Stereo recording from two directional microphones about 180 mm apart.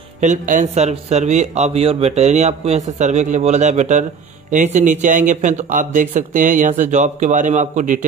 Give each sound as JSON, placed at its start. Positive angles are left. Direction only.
{"t": 0.2, "sound": "a man's voice", "side_deg": -45}